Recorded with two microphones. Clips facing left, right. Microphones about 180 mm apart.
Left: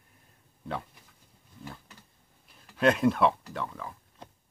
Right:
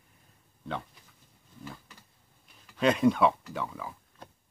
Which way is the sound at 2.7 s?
Centre (ahead or behind).